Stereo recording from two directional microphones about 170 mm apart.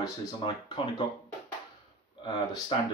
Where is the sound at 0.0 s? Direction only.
25° left (ahead or behind).